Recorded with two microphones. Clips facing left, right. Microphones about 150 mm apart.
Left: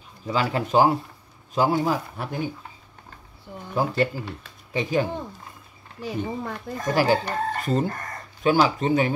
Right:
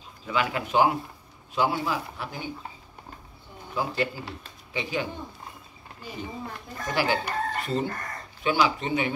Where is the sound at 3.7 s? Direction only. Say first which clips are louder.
Left 5 dB; 45° left (ahead or behind).